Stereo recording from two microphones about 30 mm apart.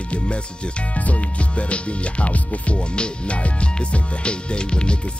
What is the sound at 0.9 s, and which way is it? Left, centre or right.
Music, left.